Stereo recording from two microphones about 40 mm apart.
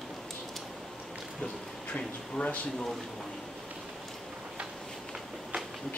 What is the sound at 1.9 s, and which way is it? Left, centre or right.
Speech, left.